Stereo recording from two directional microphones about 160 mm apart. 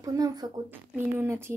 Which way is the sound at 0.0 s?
20° right (ahead or behind).